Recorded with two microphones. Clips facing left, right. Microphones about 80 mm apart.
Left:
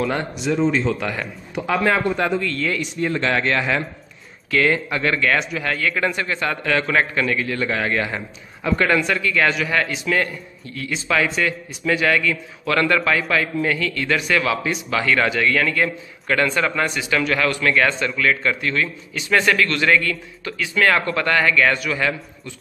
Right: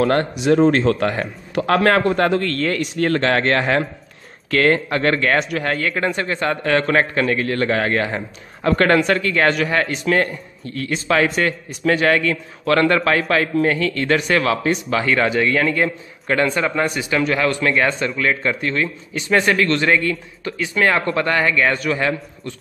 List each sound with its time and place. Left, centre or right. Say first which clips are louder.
0.1 s a man's voice: right 6 dB; right
1.5 s a man's voice: right 4 dB; right
3.2 s a man's voice: right 2 dB; right